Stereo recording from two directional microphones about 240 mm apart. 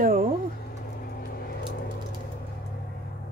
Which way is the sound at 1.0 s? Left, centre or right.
Left.